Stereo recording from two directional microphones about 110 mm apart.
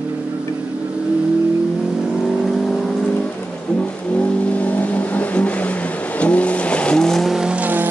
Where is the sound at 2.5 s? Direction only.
5° left (ahead or behind).